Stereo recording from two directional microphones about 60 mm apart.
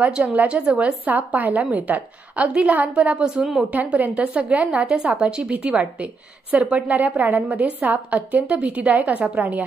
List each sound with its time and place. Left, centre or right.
0.0 s a woman's voice: centre